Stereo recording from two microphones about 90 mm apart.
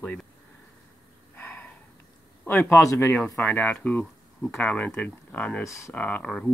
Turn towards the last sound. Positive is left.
turn(degrees=10)  # may be behind; listen again after turning